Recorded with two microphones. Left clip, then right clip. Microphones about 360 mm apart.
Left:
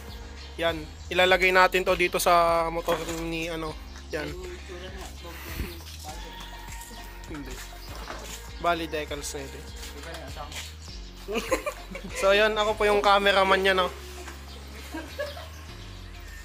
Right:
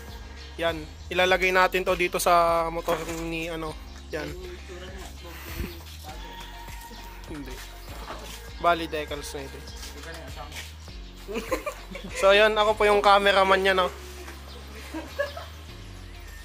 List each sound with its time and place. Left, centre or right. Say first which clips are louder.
0.6 s a man's voice: even; centre
5.4 s music: right 1 dB; centre
7.4 s music: even; centre
10.2 s a man's voice: left 1 dB; centre